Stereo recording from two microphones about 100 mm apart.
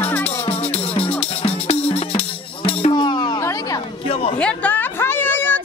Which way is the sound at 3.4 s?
30° left (ahead or behind).